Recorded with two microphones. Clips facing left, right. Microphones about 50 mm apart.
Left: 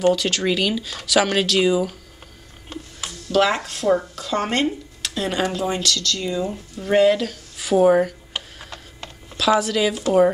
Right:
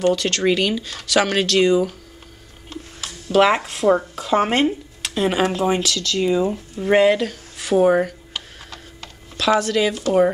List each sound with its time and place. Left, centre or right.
0.1 s speech: centre
3.1 s speech: centre
8.3 s mechanisms: centre
9.4 s speech: centre